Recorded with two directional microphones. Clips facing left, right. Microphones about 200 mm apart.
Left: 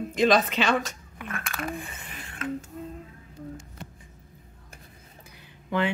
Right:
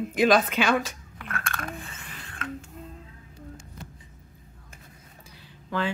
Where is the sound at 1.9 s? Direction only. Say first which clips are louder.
Left 1 dB; 20° left (ahead or behind).